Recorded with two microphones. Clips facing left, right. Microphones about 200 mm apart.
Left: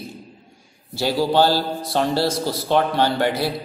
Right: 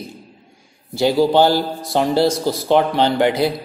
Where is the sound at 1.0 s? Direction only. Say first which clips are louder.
Right 4 dB; 15° right (ahead or behind).